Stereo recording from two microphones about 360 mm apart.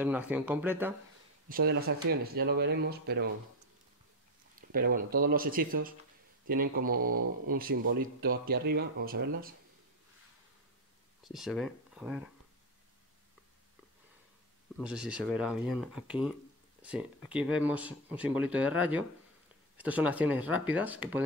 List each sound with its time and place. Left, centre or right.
0.0 s speech: centre
1.5 s speech: right
4.6 s speech: right
11.2 s speech: centre
14.8 s speech: centre